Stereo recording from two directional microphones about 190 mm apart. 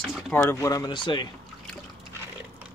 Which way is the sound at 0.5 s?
15° left (ahead or behind).